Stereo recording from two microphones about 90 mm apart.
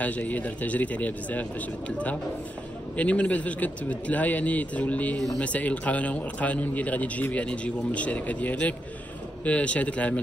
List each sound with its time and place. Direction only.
0.0 s a man's voice: 15° left (ahead or behind)
3.0 s a man's voice: 15° left (ahead or behind)